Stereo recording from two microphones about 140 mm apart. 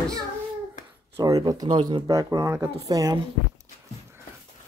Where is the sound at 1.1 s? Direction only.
25° right (ahead or behind).